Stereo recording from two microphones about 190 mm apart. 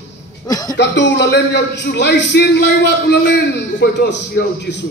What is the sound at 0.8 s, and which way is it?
A man's voice, 65° left (ahead or behind).